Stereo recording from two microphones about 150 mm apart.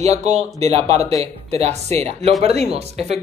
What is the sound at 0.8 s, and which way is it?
Speech, 20° left (ahead or behind).